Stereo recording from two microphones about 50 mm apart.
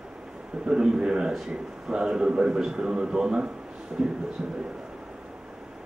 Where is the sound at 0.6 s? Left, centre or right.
Centre.